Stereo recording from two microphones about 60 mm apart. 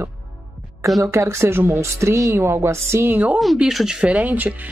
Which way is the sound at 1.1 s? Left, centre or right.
Right.